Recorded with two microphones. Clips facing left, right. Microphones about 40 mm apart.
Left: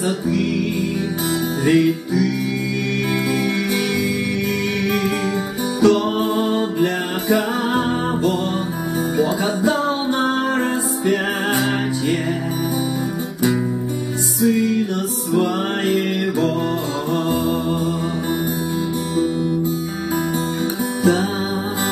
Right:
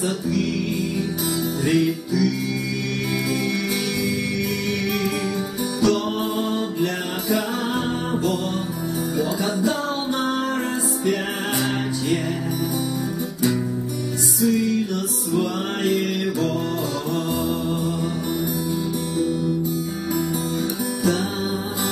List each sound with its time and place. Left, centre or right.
1.7 s music: left
5.9 s music: left
14.4 s music: centre